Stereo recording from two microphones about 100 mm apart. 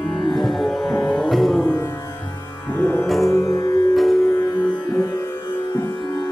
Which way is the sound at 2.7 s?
15° left (ahead or behind).